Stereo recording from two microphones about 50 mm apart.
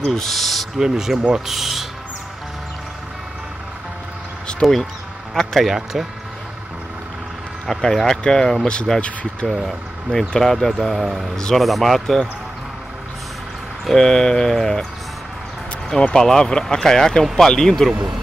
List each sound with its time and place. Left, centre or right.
0.0 s speech: centre
0.3 s speech: centre
0.7 s speech: centre
4.5 s a sound: centre
5.3 s speech: centre
5.7 s speech: centre
7.6 s speech: centre
9.0 s speech: left
10.1 s speech: centre
11.6 s speech: centre
13.8 s speech: centre
15.9 s speech: centre